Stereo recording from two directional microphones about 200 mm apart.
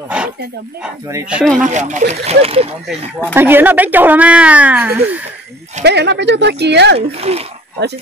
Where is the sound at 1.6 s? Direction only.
35° right (ahead or behind).